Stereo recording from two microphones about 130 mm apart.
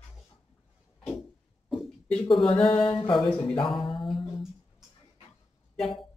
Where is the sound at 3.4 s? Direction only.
40° left (ahead or behind).